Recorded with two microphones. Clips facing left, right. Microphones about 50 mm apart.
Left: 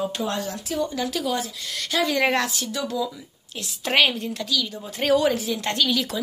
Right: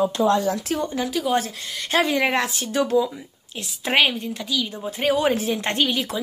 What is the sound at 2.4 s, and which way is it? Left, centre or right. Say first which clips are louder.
Speech: right 4 dB; right.